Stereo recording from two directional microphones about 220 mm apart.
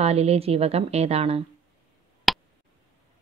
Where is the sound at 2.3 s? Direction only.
Centre (ahead or behind).